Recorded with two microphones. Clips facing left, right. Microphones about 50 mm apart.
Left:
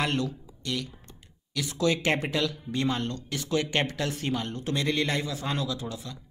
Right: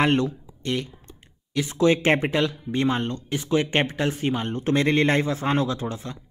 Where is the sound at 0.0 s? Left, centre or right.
Right.